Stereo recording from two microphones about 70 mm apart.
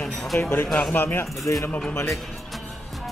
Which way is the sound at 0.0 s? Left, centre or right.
Centre.